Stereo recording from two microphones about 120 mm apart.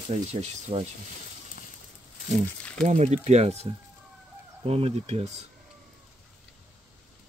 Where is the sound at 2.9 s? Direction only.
70° right (ahead or behind).